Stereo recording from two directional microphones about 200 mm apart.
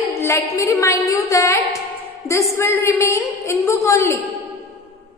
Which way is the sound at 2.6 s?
15° left (ahead or behind).